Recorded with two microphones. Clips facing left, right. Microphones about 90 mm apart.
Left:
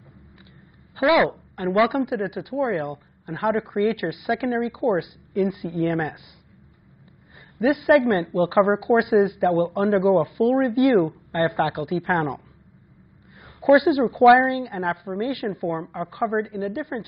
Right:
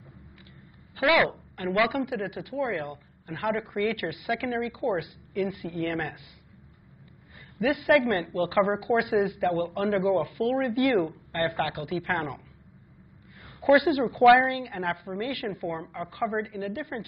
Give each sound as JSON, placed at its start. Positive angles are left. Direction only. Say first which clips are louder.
{"t": 0.9, "sound": "speech", "louder": "left 5 dB", "side_deg": 25}
{"t": 7.5, "sound": "speech", "louder": "left 5 dB", "side_deg": 30}
{"t": 13.6, "sound": "speech", "louder": "left 5 dB", "side_deg": 20}